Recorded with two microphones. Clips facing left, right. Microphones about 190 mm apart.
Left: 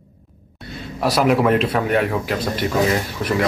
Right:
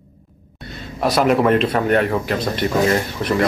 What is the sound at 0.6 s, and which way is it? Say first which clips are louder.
A man's voice: right 1 dB; 5° left (ahead or behind).